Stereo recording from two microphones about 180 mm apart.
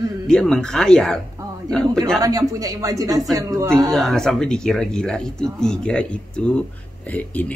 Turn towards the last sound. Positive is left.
turn(degrees=10)  # may be behind; listen again after turning